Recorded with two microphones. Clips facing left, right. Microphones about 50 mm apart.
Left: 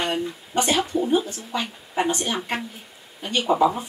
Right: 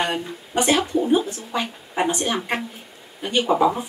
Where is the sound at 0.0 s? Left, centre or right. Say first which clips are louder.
Right 1 dB; centre.